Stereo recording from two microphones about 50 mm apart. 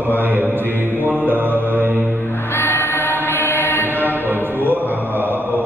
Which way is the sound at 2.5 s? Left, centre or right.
Left.